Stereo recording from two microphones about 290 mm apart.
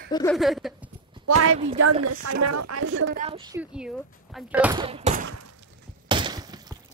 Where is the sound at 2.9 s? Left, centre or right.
Right.